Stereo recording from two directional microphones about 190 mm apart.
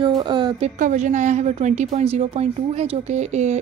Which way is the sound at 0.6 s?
40° right (ahead or behind).